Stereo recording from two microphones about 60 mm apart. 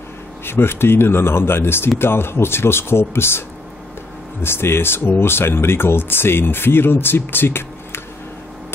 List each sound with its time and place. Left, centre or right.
0.5 s speech: left